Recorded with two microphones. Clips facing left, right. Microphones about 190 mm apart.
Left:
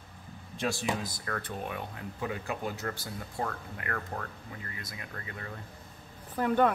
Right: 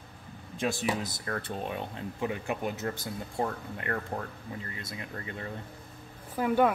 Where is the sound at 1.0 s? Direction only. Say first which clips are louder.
Right 2 dB; 25° right (ahead or behind).